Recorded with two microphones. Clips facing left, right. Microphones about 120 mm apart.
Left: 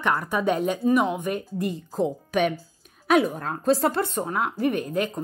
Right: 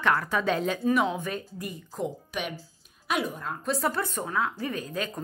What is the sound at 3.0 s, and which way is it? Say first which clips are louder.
A woman's voice: left 9 dB; 45° left (ahead or behind).